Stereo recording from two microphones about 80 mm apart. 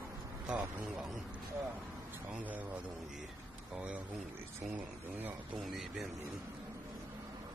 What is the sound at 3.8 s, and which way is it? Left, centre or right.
Speech, centre.